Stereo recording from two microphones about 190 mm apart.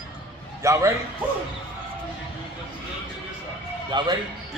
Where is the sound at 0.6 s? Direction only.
15° right (ahead or behind).